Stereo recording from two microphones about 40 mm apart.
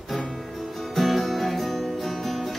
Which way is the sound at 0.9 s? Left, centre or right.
Centre.